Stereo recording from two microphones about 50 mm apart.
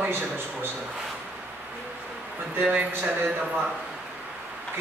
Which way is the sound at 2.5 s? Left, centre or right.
Right.